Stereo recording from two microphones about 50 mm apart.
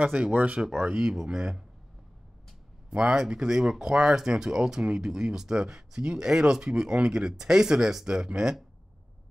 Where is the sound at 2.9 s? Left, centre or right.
Centre.